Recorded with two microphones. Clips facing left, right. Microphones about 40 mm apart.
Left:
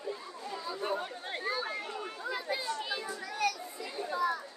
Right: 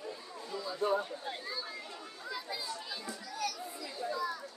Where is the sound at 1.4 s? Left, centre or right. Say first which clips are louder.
Left 7 dB; left.